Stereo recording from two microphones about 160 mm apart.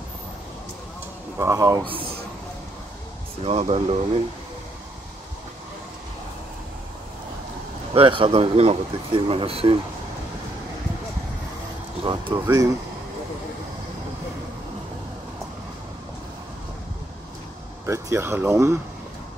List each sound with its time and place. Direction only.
1.4 s speech: 20° right (ahead or behind)
3.4 s speech: 40° right (ahead or behind)
7.9 s speech: 35° right (ahead or behind)
12.0 s speech: 35° right (ahead or behind)
17.8 s speech: 20° right (ahead or behind)